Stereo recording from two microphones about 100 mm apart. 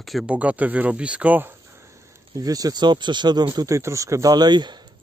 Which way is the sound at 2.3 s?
40° right (ahead or behind).